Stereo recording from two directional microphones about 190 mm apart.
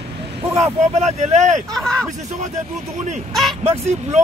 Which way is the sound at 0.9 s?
35° right (ahead or behind).